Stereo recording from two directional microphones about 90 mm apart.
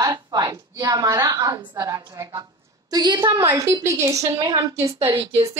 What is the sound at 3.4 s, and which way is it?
A woman's voice, 35° right (ahead or behind).